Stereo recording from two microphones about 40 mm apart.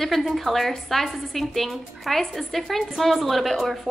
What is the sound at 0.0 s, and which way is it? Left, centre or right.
A woman's voice, centre.